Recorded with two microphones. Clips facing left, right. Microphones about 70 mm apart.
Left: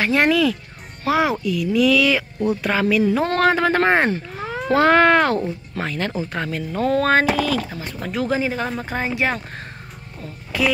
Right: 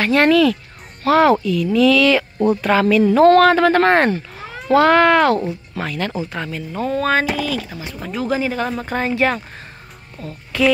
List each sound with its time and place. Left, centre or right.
0.0 s speech: centre
2.3 s speech: right
2.6 s speech: centre
3.3 s speech: centre
4.7 s speech: left
6.3 s speech: left
6.8 s speech: left
8.3 s speech: left